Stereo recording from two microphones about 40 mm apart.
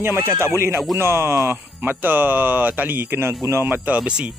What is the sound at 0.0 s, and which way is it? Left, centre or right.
Speech, right.